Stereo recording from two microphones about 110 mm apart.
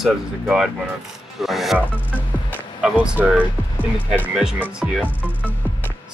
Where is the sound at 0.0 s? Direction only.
Centre (ahead or behind).